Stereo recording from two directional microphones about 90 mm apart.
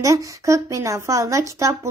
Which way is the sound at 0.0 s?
35° right (ahead or behind).